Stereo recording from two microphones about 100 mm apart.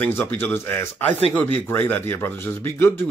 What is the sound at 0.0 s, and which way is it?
Speech, 20° left (ahead or behind).